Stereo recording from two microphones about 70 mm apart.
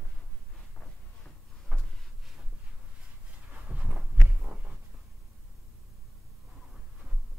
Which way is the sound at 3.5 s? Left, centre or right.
Centre.